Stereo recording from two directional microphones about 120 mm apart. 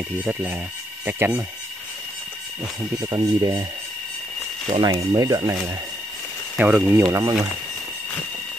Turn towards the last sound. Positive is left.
turn(degrees=-30)  # may be behind; listen again after turning